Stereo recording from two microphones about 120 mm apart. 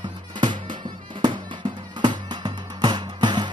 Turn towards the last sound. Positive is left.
turn(degrees=-40)  # may be behind; listen again after turning